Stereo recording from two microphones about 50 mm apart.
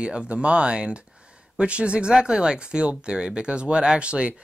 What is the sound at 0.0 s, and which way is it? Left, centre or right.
Speech, centre.